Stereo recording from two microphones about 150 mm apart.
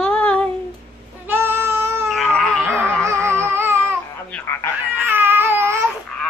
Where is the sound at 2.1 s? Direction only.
5° left (ahead or behind).